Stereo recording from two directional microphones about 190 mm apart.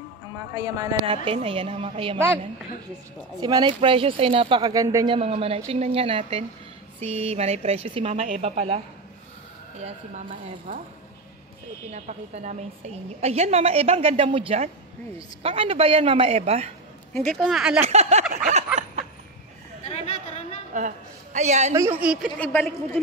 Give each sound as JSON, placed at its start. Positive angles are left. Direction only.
{"t": 0.6, "sound": "a woman's voice", "side_deg": -20}
{"t": 2.1, "sound": "speech", "side_deg": -10}
{"t": 3.3, "sound": "a woman's voice", "side_deg": -25}
{"t": 9.8, "sound": "a woman's voice", "side_deg": -40}
{"t": 11.9, "sound": "a woman's voice", "side_deg": -35}
{"t": 17.1, "sound": "speech", "side_deg": 5}
{"t": 17.8, "sound": "a woman's voice", "side_deg": -35}
{"t": 20.7, "sound": "a woman's voice", "side_deg": -40}
{"t": 21.7, "sound": "speech", "side_deg": -10}
{"t": 22.4, "sound": "a man's voice", "side_deg": 10}